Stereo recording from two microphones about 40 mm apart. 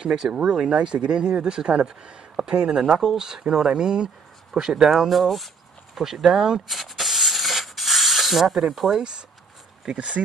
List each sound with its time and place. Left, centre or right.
0.0 s speech: centre
0.7 s speech: right
2.7 s speech: centre
5.9 s a sound: centre
8.8 s speech: centre